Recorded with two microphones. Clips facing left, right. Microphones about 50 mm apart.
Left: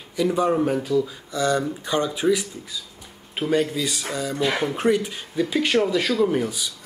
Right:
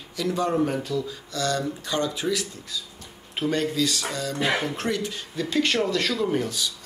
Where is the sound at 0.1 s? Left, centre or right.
Centre.